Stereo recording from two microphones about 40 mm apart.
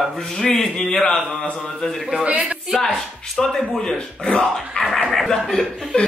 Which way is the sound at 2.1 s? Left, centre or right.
Right.